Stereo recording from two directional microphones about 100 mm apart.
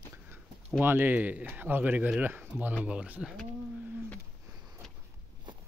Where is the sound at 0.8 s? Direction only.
20° right (ahead or behind).